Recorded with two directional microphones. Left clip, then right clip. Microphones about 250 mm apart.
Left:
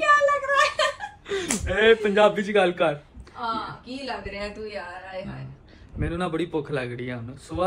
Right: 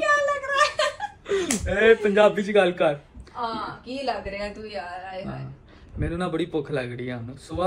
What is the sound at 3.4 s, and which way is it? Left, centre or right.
A man's voice, centre.